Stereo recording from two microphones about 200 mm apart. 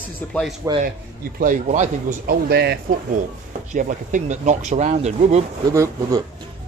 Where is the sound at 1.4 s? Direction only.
40° right (ahead or behind).